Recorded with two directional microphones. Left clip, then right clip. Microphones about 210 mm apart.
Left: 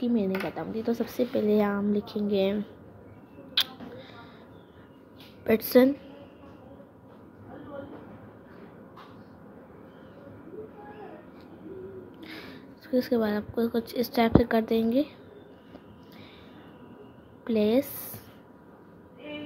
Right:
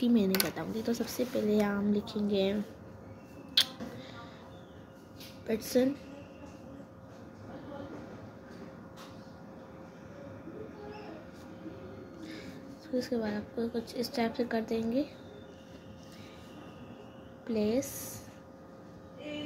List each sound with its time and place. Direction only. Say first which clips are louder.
0.0 s speech: left 1 dB; 5° right (ahead or behind)
0.6 s speech: left 4 dB; 10° left (ahead or behind)
3.6 s a sound: left 1 dB; 5° left (ahead or behind)
5.5 s a woman's voice: left 9 dB; 20° left (ahead or behind)
12.2 s a sound: left 1 dB; 20° left (ahead or behind)
12.9 s a woman's voice: left 7 dB; 20° left (ahead or behind)
17.5 s a woman's voice: left 7 dB; 20° left (ahead or behind)